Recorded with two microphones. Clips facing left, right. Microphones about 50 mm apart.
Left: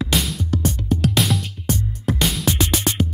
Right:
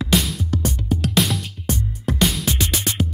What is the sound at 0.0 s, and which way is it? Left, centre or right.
Music, centre.